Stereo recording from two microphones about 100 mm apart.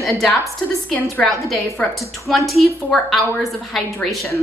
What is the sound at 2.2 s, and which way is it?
A woman's voice, centre (ahead or behind).